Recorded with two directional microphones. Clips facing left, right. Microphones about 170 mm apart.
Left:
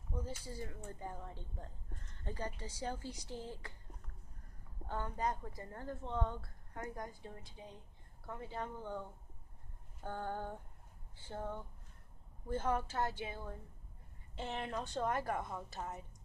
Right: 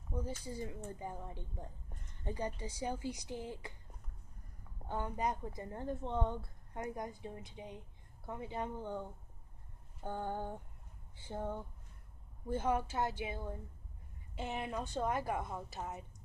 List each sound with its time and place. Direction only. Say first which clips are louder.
0.4 s a woman's voice: right 3 dB; 15° right (ahead or behind)
4.8 s a woman's voice: right 2 dB; 15° right (ahead or behind)
10.0 s a woman's voice: right 2 dB; 15° right (ahead or behind)